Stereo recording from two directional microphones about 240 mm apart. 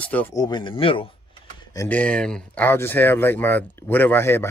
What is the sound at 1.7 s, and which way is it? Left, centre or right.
A man's voice, centre.